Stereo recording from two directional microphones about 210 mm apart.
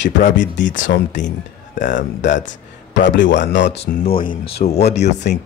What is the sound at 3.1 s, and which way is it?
Speech, 60° left (ahead or behind).